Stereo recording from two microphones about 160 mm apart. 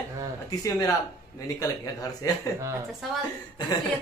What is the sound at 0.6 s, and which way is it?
Speech, 20° left (ahead or behind).